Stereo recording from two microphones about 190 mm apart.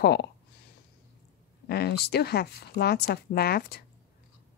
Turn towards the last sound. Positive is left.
turn(degrees=55)  # may be behind; listen again after turning